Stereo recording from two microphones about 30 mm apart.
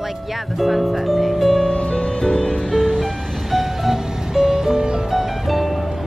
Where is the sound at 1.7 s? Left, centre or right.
Left.